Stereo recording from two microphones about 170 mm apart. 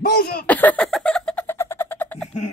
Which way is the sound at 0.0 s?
60° left (ahead or behind).